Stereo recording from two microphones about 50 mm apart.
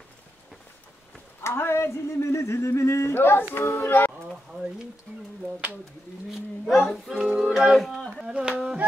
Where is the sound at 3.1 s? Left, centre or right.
Left.